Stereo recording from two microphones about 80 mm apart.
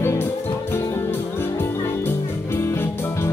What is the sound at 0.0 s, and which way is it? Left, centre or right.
Music, left.